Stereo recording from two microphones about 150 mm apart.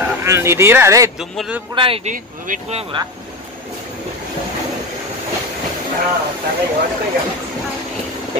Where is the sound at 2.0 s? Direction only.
50° right (ahead or behind).